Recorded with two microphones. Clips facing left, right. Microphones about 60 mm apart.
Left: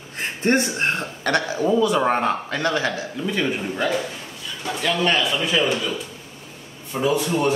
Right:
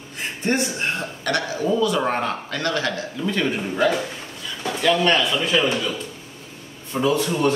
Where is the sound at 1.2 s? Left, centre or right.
Left.